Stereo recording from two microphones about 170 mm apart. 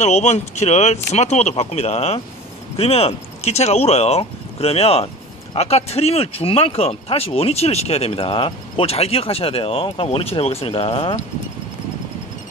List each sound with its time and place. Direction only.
0.0 s speech: 40° left (ahead or behind)